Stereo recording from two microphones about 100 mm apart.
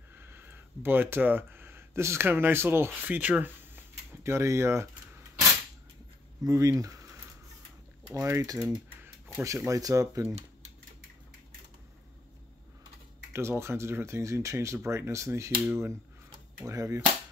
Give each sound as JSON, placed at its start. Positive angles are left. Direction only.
{"t": 0.1, "sound": "speech", "side_deg": -20}
{"t": 6.4, "sound": "speech", "side_deg": -35}
{"t": 8.6, "sound": "a sound", "side_deg": -25}
{"t": 9.7, "sound": "speech", "side_deg": -35}
{"t": 13.3, "sound": "speech", "side_deg": -25}
{"t": 16.6, "sound": "speech", "side_deg": -35}